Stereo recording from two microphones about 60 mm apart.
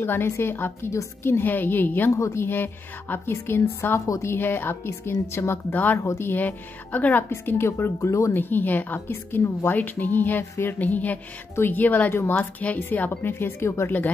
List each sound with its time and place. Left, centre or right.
0.0 s speech: left
2.1 s speech: left
2.5 s speech: left
5.7 s speech: left
6.0 s speech: left
6.3 s speech: left
7.2 s speech: left
8.4 s speech: left
13.3 s speech: left